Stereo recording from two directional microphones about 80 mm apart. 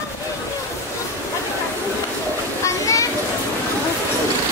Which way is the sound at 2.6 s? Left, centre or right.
Left.